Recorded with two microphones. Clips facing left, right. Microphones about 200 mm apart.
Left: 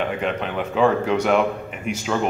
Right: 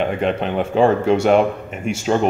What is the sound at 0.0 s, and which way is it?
Speech, 30° right (ahead or behind).